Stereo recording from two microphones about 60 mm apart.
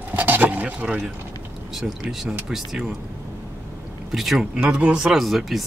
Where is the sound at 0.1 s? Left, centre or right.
Right.